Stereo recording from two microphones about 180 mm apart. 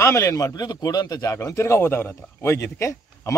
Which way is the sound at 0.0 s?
15° left (ahead or behind).